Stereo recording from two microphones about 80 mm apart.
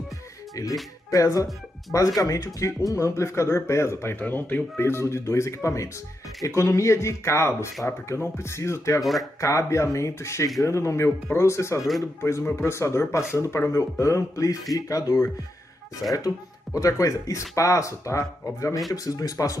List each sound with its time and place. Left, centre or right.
0.6 s speech: left
9.0 s speech: centre
9.4 s speech: left
16.7 s speech: left